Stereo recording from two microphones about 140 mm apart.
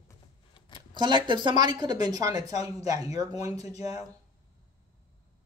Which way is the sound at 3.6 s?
50° left (ahead or behind).